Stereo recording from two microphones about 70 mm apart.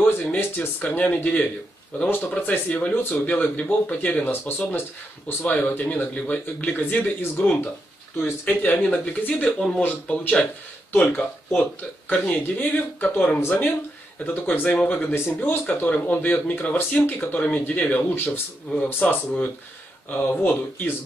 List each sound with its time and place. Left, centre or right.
0.0 s speech: left
8.5 s speech: left